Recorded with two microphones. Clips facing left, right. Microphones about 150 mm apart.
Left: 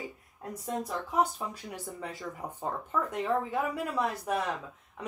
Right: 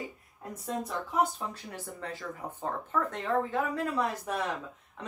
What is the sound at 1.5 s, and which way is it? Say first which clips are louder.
Speech: left 1 dB; 15° left (ahead or behind).